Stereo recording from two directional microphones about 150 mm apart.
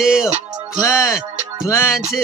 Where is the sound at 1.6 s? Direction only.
20° left (ahead or behind).